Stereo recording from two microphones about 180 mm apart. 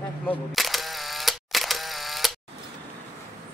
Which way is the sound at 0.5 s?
Centre (ahead or behind).